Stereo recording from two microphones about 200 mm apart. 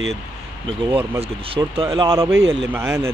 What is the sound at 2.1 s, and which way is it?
Speech, 10° right (ahead or behind).